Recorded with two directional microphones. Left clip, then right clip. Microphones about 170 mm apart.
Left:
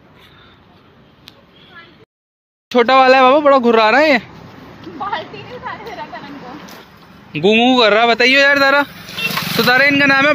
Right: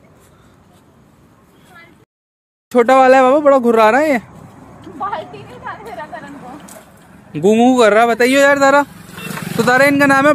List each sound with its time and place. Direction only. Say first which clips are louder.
2.7 s speech: right 1 dB; 20° right (ahead or behind)
5.7 s a sound: even; 5° right (ahead or behind)
7.3 s speech: even; 25° right (ahead or behind)
9.0 s vehicle: left 8 dB; 65° right (ahead or behind)
9.6 s speech: right 1 dB; 20° right (ahead or behind)